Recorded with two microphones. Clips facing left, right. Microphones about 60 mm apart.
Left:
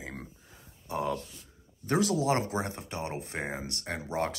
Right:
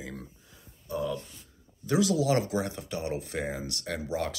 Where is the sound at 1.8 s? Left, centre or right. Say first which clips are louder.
Right 1 dB; left.